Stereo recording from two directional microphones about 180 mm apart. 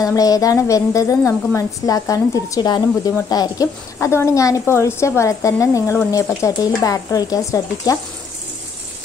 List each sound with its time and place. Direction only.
0.0 s a woman's voice: 20° left (ahead or behind)